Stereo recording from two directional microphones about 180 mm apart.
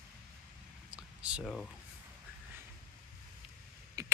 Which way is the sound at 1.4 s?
5° left (ahead or behind).